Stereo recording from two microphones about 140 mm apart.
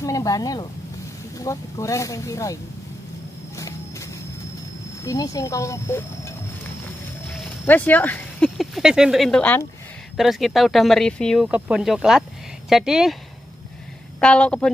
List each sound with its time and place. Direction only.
0.0 s speech: 25° left (ahead or behind)
5.0 s speech: 25° left (ahead or behind)
7.2 s a sound: centre (ahead or behind)
7.6 s speech: 10° left (ahead or behind)
8.5 s speech: centre (ahead or behind)
9.4 s a woman's voice: 15° left (ahead or behind)
10.1 s speech: centre (ahead or behind)
11.4 s speech: 10° right (ahead or behind)
14.2 s a woman's voice: 10° left (ahead or behind)